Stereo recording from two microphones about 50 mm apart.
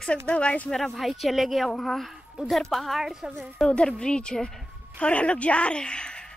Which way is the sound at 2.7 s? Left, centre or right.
Centre.